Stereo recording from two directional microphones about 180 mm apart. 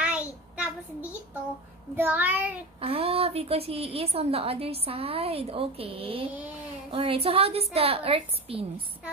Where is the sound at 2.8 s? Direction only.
30° right (ahead or behind).